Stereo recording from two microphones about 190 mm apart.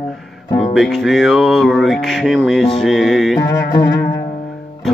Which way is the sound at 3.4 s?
15° left (ahead or behind).